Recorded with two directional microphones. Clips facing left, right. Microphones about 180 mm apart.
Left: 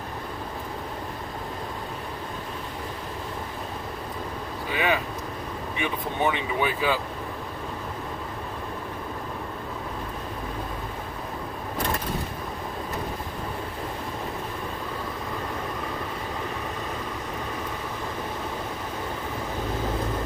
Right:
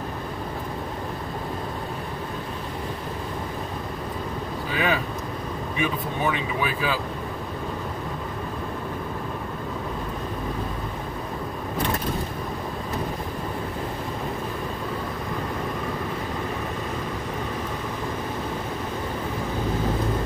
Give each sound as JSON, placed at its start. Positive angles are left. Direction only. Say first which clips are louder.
{"t": 4.7, "sound": "vehicle", "louder": "even", "side_deg": 20}
{"t": 5.8, "sound": "speech", "louder": "right 1 dB", "side_deg": 25}